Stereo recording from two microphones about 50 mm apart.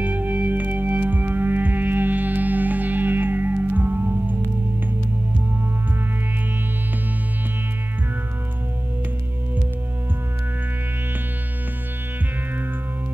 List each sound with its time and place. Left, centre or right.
0.0 s music: right